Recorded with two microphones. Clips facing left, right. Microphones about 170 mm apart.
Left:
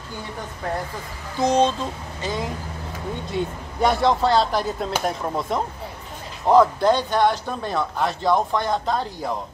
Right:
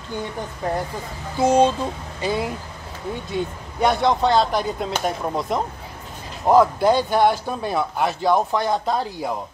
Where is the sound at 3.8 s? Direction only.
Centre (ahead or behind).